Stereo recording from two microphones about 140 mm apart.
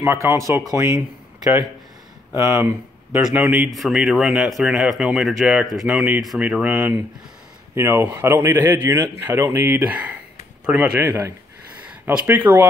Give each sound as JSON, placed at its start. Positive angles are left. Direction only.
{"t": 0.0, "sound": "speech", "side_deg": -20}
{"t": 2.5, "sound": "speech", "side_deg": -15}
{"t": 3.2, "sound": "speech", "side_deg": -5}
{"t": 11.8, "sound": "a sound", "side_deg": -10}
{"t": 12.3, "sound": "speech", "side_deg": -15}